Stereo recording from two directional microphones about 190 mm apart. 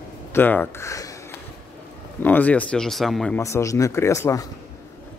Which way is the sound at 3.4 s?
15° left (ahead or behind).